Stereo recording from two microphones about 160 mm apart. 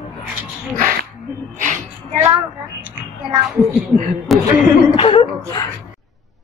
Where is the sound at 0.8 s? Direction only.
60° right (ahead or behind).